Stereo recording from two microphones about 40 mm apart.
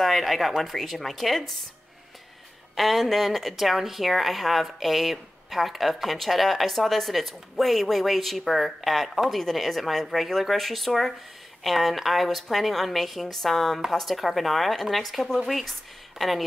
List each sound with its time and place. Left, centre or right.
0.0 s a woman's voice: centre
2.7 s a woman's voice: centre